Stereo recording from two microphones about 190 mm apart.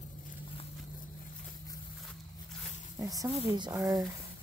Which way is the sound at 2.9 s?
20° right (ahead or behind).